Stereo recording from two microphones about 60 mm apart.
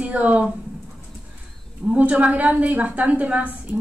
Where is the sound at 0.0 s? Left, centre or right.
Right.